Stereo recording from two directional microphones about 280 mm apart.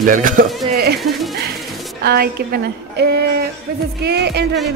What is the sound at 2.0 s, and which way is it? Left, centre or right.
Speech, right.